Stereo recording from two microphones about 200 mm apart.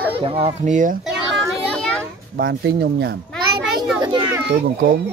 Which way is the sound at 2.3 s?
50° right (ahead or behind).